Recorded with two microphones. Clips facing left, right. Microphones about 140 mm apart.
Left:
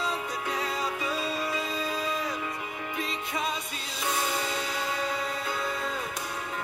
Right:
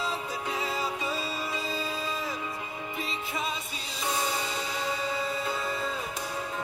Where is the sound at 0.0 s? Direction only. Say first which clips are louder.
Left 1 dB; centre (ahead or behind).